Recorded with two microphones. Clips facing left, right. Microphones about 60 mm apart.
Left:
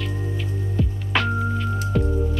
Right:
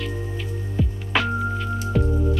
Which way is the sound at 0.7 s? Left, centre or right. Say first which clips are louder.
Even; centre.